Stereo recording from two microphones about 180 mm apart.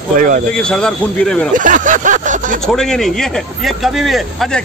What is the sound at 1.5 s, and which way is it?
Speech, 45° right (ahead or behind).